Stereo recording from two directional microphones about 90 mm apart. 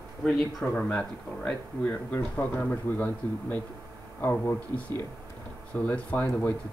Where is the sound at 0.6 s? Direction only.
15° left (ahead or behind).